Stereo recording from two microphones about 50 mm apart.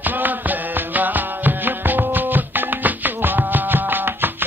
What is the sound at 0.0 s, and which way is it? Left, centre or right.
Music, right.